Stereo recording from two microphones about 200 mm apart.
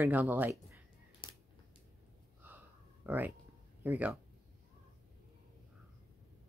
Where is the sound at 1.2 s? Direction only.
25° left (ahead or behind).